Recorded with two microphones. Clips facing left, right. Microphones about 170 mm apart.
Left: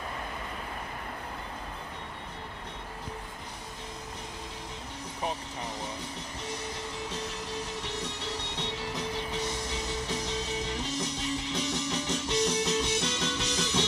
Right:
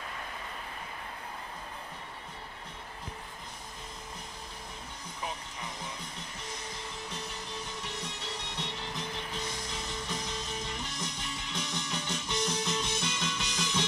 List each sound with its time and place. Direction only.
7.8 s music: 65° left (ahead or behind)
10.0 s music: 70° left (ahead or behind)